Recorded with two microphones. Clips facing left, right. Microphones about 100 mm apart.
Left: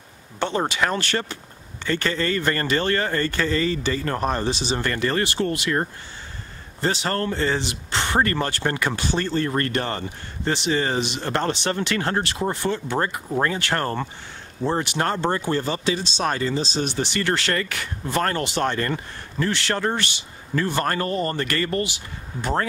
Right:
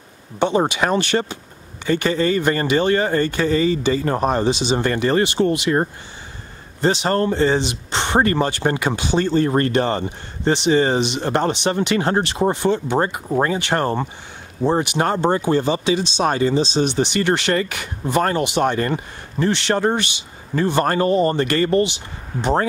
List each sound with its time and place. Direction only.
0.4 s speech: 15° right (ahead or behind)